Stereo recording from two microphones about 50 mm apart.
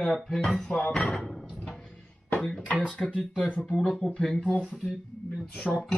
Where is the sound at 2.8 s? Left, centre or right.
Centre.